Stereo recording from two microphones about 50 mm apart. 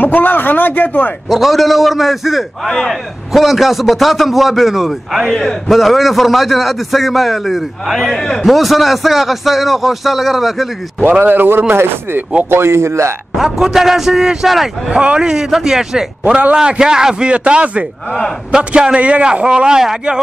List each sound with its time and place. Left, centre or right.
0.0 s speech: left
1.3 s a man's voice: centre
5.3 s a man's voice: centre
5.7 s a man's voice: centre
8.5 s a man's voice: centre
11.1 s speech: right
11.7 s speech: right
13.4 s a man's voice: centre
14.9 s a man's voice: right
18.9 s a man's voice: right
19.4 s a man's voice: centre